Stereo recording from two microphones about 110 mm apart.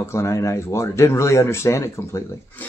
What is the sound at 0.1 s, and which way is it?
A man's voice, 25° left (ahead or behind).